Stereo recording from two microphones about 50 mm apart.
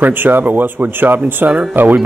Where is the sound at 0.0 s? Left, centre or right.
Right.